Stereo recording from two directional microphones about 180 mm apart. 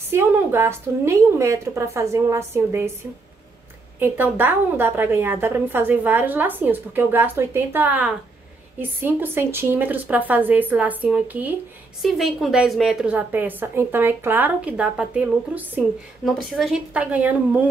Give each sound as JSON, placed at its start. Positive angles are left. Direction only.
{"t": 0.1, "sound": "a woman's voice", "side_deg": -15}
{"t": 4.0, "sound": "a woman's voice", "side_deg": -10}